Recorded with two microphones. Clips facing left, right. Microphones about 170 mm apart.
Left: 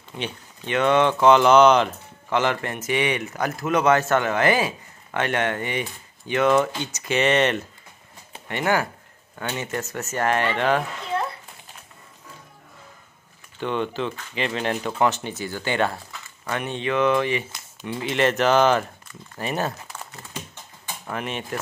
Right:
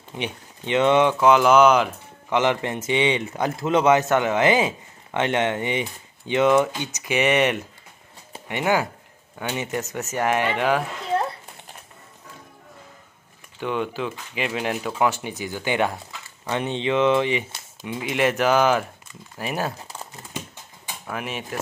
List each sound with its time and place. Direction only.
0.1 s speech: 20° right (ahead or behind)
1.2 s speech: 5° right (ahead or behind)
13.6 s speech: 10° right (ahead or behind)
19.9 s a sound: 25° right (ahead or behind)
21.1 s speech: 5° right (ahead or behind)